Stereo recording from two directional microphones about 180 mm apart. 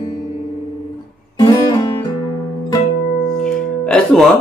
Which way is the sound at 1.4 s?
25° left (ahead or behind).